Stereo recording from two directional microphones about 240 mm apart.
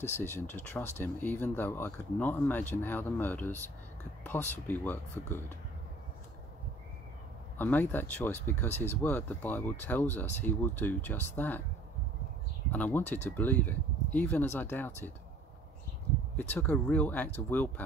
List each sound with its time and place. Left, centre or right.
0.2 s speech: centre
7.5 s speech: centre
8.6 s speech: left
9.0 s speech: centre
12.7 s speech: centre
16.3 s speech: centre